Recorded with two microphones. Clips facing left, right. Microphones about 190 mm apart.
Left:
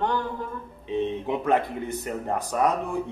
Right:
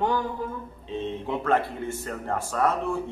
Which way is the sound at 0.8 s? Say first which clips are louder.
Left 4 dB; 15° left (ahead or behind).